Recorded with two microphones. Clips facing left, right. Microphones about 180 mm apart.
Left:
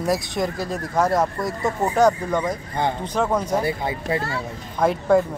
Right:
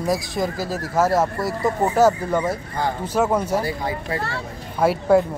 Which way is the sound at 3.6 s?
25° left (ahead or behind).